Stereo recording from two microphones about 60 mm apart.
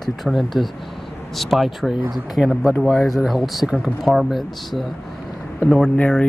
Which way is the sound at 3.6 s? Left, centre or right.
Centre.